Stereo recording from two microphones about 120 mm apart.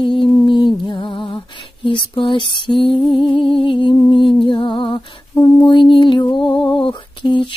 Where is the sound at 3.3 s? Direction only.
45° left (ahead or behind).